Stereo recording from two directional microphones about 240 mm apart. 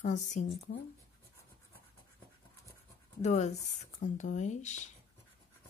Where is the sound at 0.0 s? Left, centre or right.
Left.